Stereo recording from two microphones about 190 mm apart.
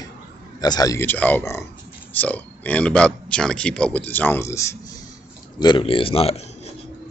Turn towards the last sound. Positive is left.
turn(degrees=30)  # may be behind; listen again after turning